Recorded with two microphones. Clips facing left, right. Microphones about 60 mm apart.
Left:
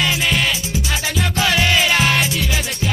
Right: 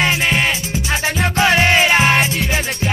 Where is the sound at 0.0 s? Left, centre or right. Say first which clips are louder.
Right 2 dB; right.